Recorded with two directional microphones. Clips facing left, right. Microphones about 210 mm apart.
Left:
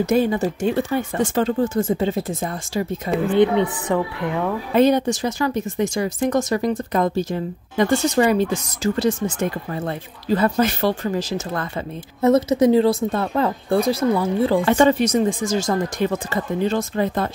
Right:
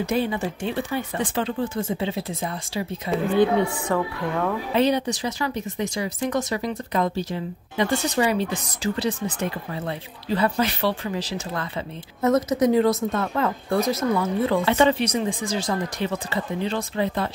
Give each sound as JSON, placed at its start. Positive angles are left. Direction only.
{"t": 0.0, "sound": "speech", "side_deg": 45}
{"t": 3.9, "sound": "speech", "side_deg": 20}
{"t": 4.7, "sound": "speech", "side_deg": 45}
{"t": 12.2, "sound": "speech", "side_deg": 30}
{"t": 14.6, "sound": "speech", "side_deg": 50}